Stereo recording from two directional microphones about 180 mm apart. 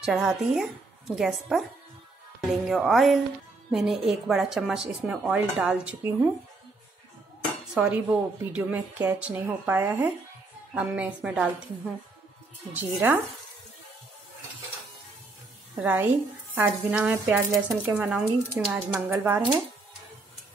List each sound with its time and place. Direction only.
0.0 s speech: 5° right (ahead or behind)
2.6 s speech: centre (ahead or behind)
7.7 s a woman's voice: 5° right (ahead or behind)
15.7 s a woman's voice: 10° right (ahead or behind)